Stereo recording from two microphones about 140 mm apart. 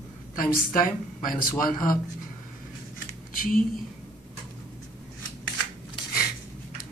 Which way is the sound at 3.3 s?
85° left.